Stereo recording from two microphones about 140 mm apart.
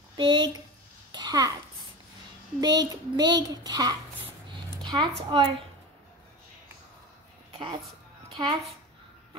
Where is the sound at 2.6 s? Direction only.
30° right (ahead or behind).